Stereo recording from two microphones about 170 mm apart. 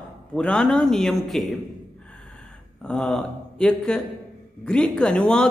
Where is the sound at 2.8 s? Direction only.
5° left (ahead or behind).